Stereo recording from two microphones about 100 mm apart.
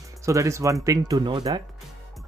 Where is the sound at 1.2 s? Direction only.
45° right (ahead or behind).